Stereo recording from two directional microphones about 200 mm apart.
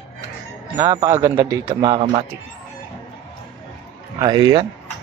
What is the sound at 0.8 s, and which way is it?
A man's voice, 20° right (ahead or behind).